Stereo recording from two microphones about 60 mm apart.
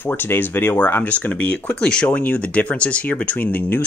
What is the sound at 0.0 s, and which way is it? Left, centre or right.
Speech, left.